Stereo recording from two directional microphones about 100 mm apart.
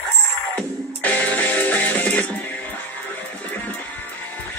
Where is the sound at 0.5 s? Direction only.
15° left (ahead or behind).